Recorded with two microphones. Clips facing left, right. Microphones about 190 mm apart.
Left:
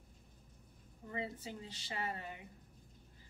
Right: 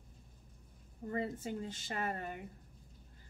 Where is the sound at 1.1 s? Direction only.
50° right (ahead or behind).